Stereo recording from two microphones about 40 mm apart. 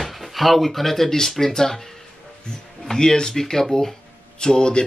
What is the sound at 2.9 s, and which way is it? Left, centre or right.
Speech, centre.